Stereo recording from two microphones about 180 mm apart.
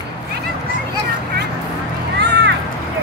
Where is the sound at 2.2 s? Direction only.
65° right (ahead or behind).